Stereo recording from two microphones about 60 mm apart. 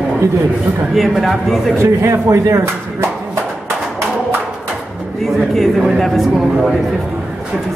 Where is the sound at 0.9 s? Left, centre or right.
Centre.